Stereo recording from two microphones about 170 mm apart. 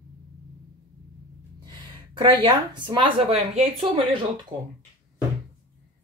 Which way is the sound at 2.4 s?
25° right (ahead or behind).